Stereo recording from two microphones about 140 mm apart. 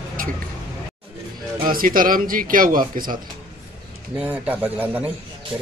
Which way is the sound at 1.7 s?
90° right.